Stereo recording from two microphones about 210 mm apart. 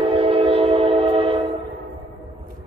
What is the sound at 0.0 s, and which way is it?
Train, 25° right (ahead or behind).